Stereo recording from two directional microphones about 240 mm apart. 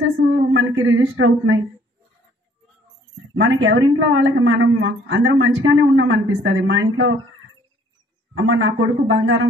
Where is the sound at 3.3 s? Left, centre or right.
Right.